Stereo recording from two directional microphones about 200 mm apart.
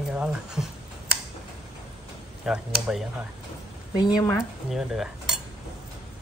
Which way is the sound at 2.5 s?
Centre (ahead or behind).